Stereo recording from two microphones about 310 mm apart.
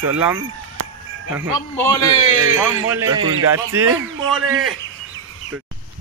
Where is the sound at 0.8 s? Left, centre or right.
Right.